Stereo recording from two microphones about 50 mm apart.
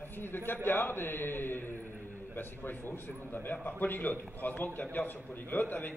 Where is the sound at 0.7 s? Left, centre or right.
Left.